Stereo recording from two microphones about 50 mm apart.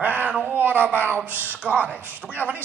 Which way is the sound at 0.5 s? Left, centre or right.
Right.